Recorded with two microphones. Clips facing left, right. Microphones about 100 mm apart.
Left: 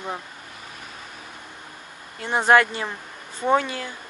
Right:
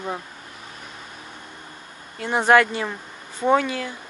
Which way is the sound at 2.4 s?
25° left (ahead or behind).